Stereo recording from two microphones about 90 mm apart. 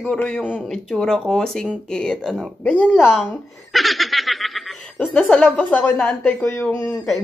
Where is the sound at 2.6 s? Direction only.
15° left (ahead or behind).